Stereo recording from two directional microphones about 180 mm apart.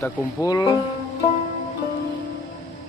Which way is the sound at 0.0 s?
20° left (ahead or behind).